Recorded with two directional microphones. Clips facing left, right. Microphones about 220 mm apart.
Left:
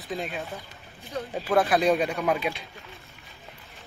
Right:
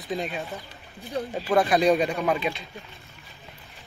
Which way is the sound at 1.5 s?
Centre (ahead or behind).